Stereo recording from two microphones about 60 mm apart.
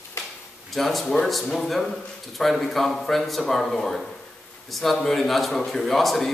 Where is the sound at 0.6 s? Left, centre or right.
Centre.